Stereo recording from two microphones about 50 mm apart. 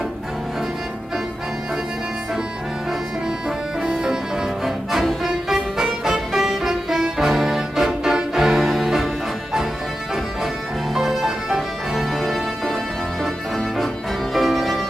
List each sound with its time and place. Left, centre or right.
3.4 s music: centre
11.0 s music: centre